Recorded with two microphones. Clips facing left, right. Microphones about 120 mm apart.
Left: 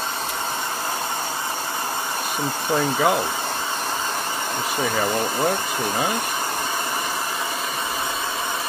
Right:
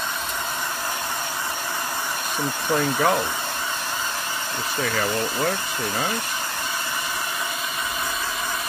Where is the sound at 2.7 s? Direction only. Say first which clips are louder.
Left 1 dB; 10° left (ahead or behind).